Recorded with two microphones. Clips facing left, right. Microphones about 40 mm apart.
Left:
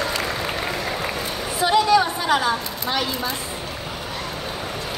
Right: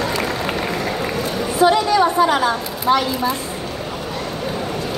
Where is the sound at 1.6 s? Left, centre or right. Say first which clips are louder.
Right 3 dB; right.